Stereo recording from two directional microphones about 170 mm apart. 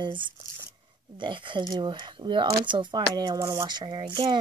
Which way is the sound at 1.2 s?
30° right (ahead or behind).